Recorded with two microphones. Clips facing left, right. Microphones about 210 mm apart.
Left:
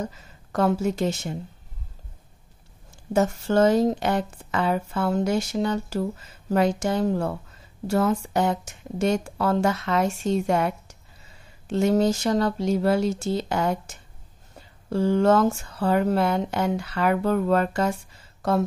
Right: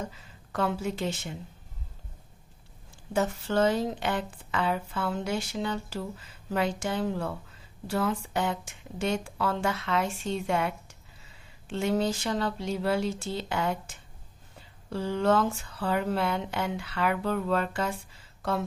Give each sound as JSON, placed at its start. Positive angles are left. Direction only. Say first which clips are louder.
{"t": 0.5, "sound": "speech", "louder": "left 7 dB", "side_deg": 45}
{"t": 3.1, "sound": "speech", "louder": "left 6 dB", "side_deg": 45}